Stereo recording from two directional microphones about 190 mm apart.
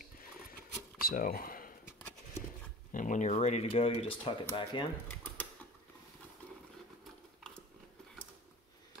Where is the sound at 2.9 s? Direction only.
45° left (ahead or behind).